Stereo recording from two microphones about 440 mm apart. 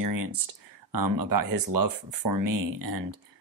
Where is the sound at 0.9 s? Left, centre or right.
Right.